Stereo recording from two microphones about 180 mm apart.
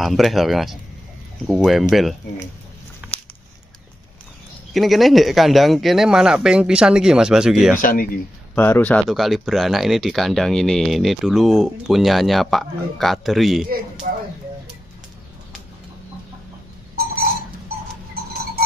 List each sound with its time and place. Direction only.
0.0 s speech: centre (ahead or behind)
3.0 s a sound: 5° right (ahead or behind)
4.7 s speech: centre (ahead or behind)
7.8 s speech: 50° left (ahead or behind)
8.5 s speech: 10° left (ahead or behind)
14.0 s speech: 45° right (ahead or behind)
16.9 s a sound: 55° right (ahead or behind)